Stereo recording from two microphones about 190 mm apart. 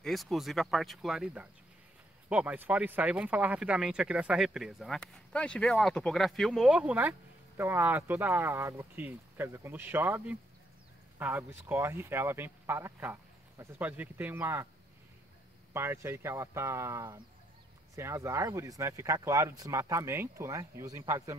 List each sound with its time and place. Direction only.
0.0 s speech: centre (ahead or behind)
15.7 s speech: 15° right (ahead or behind)